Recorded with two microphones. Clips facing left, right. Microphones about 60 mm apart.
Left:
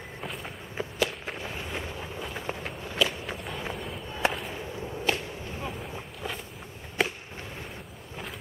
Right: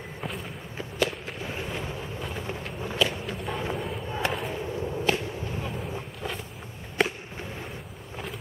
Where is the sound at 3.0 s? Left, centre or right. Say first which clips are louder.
Right 1 dB; centre.